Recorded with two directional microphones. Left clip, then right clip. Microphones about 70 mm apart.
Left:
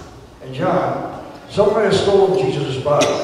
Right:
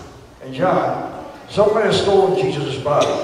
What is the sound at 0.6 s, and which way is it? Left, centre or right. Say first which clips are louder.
Speech: right 2 dB; centre.